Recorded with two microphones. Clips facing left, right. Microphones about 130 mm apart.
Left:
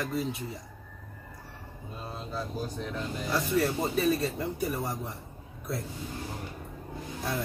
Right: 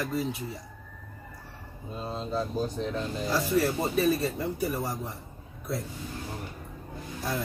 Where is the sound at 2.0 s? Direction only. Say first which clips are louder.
Right 6 dB; 25° right (ahead or behind).